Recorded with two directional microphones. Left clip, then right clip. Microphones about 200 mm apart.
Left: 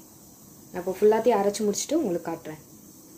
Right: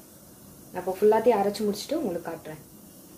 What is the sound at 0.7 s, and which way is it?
Speech, 25° left (ahead or behind).